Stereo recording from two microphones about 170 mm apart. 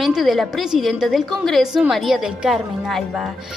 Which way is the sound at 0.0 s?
Centre (ahead or behind).